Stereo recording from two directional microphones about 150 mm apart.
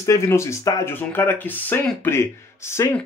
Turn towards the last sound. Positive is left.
turn(degrees=15)  # may be behind; listen again after turning